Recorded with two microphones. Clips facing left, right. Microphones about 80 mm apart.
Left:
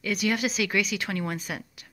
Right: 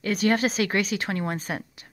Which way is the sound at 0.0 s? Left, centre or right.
Right.